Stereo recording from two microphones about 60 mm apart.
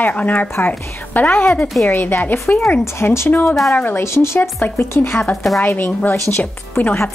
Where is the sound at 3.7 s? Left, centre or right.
Left.